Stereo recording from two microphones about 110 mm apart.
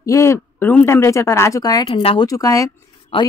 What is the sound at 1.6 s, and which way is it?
Speech, 35° left (ahead or behind).